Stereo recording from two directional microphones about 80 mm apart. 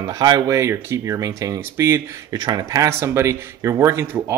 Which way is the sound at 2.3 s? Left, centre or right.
Right.